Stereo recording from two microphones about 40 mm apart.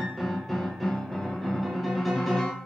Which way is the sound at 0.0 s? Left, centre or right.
Centre.